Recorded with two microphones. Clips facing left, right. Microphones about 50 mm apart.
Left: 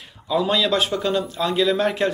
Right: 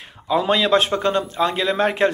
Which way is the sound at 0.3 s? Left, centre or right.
Right.